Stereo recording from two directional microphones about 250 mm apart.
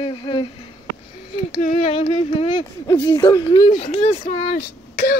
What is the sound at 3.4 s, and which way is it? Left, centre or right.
Speech, centre.